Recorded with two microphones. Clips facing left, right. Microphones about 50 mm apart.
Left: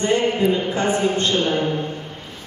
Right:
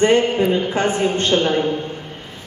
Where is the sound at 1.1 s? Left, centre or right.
Right.